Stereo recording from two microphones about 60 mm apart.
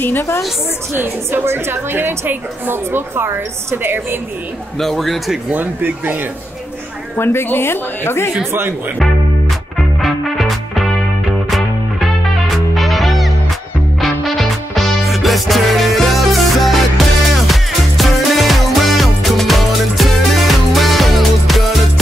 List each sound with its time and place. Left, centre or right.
0.9 s a woman's voice: right
4.7 s speech: centre
5.5 s a woman's voice: right
7.2 s a woman's voice: left
8.5 s speech: right
10.0 s music: centre
12.7 s music: centre